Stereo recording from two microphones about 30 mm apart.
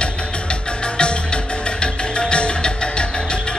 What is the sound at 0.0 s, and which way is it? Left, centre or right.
Music, left.